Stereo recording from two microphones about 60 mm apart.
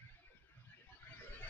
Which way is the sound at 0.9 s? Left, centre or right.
Left.